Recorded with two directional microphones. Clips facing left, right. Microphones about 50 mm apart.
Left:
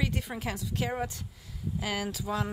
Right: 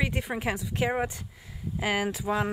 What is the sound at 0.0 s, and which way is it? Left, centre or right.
Speech, right.